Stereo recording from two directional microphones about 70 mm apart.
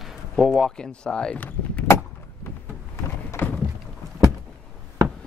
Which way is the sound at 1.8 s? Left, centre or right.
Left.